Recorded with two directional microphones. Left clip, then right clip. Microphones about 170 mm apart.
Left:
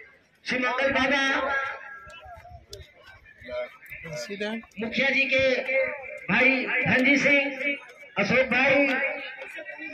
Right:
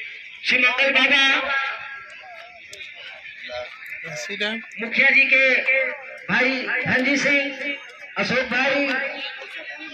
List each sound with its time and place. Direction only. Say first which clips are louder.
0.4 s a man's voice: right 7 dB; 35° left (ahead or behind)
3.4 s a sound: right 1 dB; 20° left (ahead or behind)
4.1 s speech: right 6 dB; centre (ahead or behind)
4.6 s a man's voice: right 7 dB; 15° left (ahead or behind)
6.2 s a man's voice: right 1 dB; 5° right (ahead or behind)